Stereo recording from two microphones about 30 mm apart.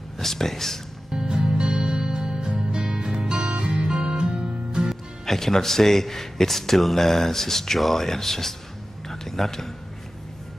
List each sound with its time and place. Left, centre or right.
0.2 s speech: centre
1.1 s music: right
3.3 s music: right
5.2 s speech: centre
9.0 s a sound: centre